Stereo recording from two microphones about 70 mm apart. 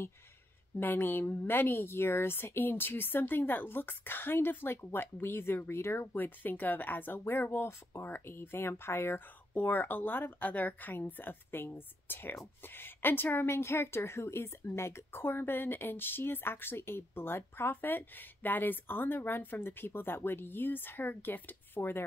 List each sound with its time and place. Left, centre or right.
0.7 s a woman's voice: left